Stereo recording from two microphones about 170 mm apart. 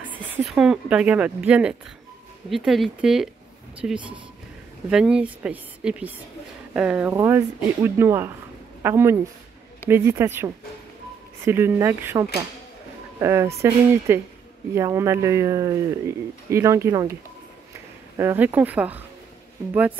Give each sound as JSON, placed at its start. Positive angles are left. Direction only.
{"t": 0.1, "sound": "speech", "side_deg": -5}